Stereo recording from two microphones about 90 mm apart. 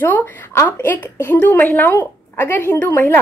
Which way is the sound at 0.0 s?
25° left (ahead or behind).